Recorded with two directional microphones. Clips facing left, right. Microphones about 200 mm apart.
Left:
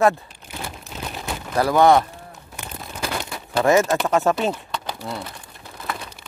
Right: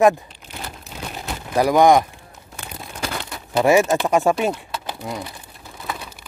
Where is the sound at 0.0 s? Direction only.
15° right (ahead or behind).